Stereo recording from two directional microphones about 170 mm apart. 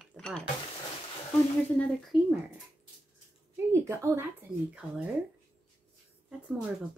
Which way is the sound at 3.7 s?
15° right (ahead or behind).